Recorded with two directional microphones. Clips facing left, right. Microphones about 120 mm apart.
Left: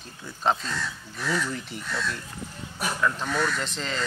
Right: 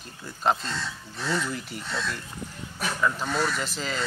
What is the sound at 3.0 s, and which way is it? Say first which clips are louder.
Speech: even; 5° right (ahead or behind).